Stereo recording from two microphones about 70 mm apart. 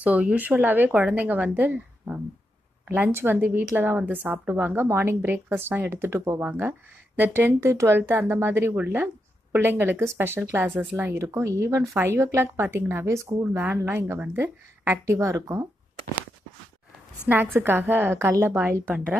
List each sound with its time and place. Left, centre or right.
0.0 s speech: right
11.2 s speech: right
15.0 s speech: right
17.3 s speech: right